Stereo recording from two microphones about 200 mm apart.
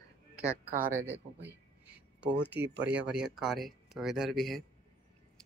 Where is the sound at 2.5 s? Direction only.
60° right (ahead or behind).